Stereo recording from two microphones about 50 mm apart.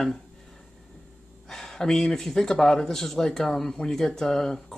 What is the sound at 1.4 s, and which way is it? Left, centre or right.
Speech, centre.